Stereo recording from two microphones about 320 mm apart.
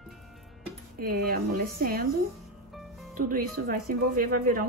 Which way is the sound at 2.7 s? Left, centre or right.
Centre.